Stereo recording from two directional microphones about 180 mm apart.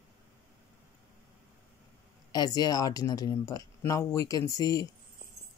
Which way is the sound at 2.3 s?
20° left (ahead or behind).